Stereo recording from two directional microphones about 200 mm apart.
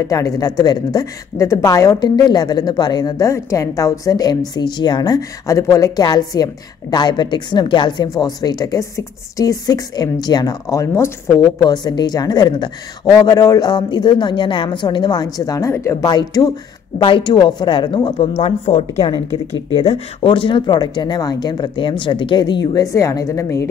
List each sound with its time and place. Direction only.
0.0 s a woman's voice: 15° left (ahead or behind)